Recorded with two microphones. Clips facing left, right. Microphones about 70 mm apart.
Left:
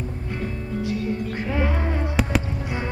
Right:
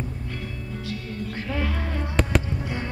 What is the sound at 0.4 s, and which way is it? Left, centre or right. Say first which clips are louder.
Music: left 6 dB; left.